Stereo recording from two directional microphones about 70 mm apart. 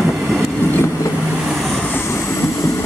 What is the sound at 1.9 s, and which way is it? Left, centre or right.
Vehicle, left.